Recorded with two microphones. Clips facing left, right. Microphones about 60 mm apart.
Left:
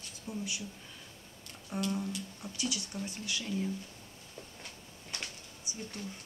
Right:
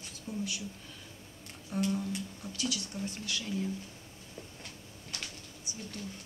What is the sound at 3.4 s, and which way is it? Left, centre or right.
Speech, centre.